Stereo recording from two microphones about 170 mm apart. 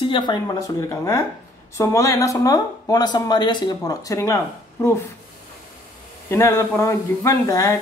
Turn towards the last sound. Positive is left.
turn(degrees=20)  # may be behind; listen again after turning